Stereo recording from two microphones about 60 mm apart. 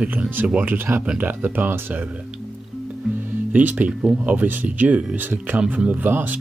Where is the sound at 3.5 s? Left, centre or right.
Right.